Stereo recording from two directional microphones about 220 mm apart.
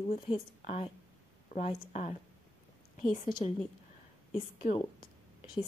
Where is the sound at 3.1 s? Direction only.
35° left (ahead or behind).